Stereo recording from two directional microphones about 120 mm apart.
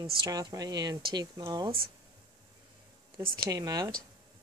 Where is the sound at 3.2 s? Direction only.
35° right (ahead or behind).